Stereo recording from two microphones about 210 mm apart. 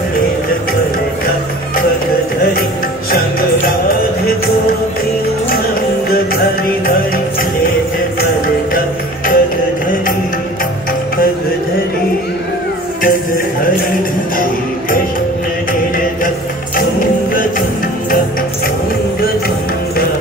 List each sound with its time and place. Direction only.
8.7 s music: 40° left (ahead or behind)